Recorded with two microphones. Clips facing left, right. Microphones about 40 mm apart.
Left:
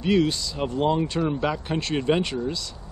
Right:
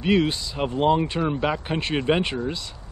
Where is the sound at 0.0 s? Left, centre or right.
Right.